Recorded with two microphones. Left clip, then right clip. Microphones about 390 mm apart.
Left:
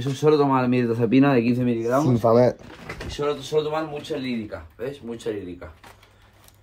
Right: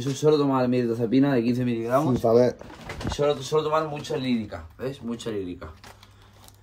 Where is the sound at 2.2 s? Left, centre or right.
Centre.